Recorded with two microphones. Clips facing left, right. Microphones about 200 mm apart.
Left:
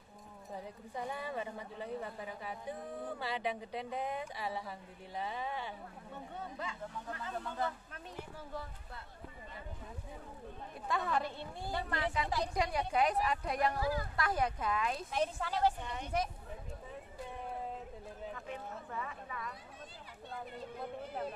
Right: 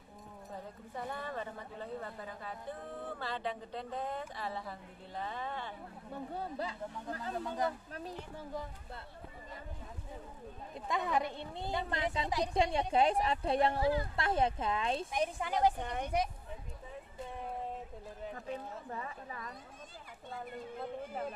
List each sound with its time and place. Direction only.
0.5 s speech: 10° left (ahead or behind)
6.3 s speech: 35° right (ahead or behind)
7.4 s speech: 15° right (ahead or behind)
10.9 s a woman's voice: 15° right (ahead or behind)
15.0 s speech: 15° right (ahead or behind)
15.8 s speech: 55° right (ahead or behind)
18.9 s speech: 35° right (ahead or behind)